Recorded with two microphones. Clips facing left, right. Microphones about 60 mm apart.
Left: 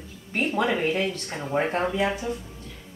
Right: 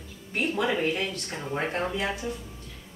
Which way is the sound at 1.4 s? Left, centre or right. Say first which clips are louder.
Left 4 dB; centre.